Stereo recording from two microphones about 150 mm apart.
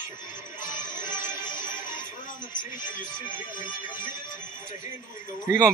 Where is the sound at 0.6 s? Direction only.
60° left (ahead or behind).